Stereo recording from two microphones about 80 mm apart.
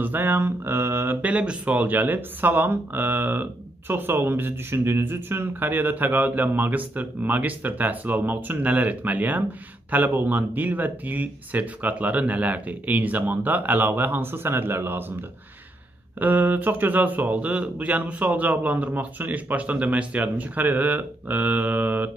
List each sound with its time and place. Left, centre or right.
0.0 s speech: right
1.2 s speech: centre
16.2 s speech: right